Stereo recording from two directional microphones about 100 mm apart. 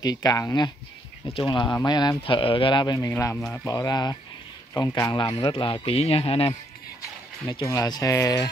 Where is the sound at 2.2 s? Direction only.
65° left (ahead or behind); by 5.3 s 40° left (ahead or behind).